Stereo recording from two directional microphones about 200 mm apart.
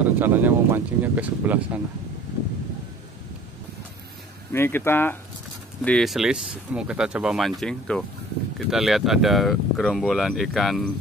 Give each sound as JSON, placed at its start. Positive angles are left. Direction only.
{"t": 0.0, "sound": "speech", "side_deg": -10}
{"t": 4.5, "sound": "speech", "side_deg": 10}